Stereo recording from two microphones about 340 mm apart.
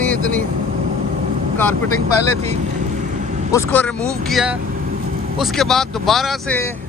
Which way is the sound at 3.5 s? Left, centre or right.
Centre.